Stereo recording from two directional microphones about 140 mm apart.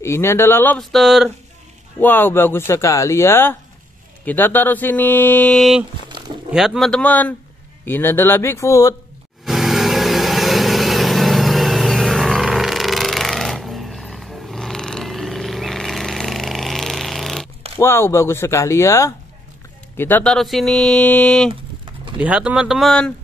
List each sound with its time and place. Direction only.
0.0 s speech: 20° left (ahead or behind)
0.7 s mantra: centre (ahead or behind)
2.0 s speech: 15° left (ahead or behind)
5.6 s mantra: centre (ahead or behind)
7.8 s speech: 15° left (ahead or behind)
9.4 s vehicle: centre (ahead or behind)
17.7 s speech: 15° left (ahead or behind)
20.3 s mantra: centre (ahead or behind)
22.2 s mantra: 10° right (ahead or behind)